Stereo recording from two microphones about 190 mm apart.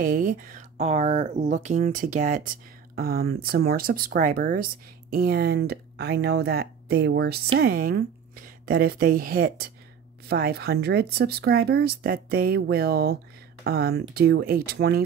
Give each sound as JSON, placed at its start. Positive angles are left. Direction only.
{"t": 0.0, "sound": "speech", "side_deg": -45}